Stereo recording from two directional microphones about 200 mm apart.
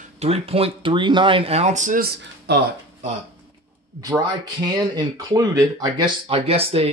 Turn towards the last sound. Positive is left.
turn(degrees=-30)  # may be behind; listen again after turning